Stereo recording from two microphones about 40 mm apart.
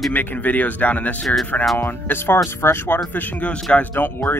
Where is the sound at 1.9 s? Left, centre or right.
Left.